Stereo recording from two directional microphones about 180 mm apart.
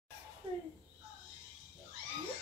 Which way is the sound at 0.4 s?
30° right (ahead or behind).